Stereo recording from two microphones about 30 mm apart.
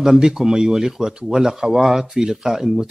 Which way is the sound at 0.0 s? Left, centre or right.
Centre.